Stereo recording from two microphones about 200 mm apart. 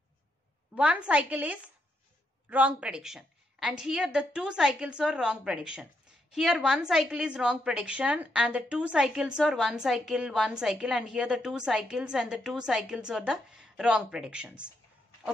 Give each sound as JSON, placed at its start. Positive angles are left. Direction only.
{"t": 0.7, "sound": "a woman's voice", "side_deg": -5}